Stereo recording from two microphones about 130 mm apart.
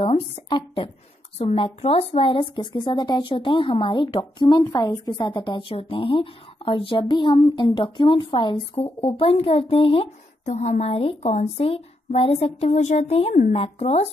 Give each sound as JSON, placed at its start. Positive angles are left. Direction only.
{"t": 0.0, "sound": "a woman's voice", "side_deg": 45}
{"t": 10.4, "sound": "speech", "side_deg": 65}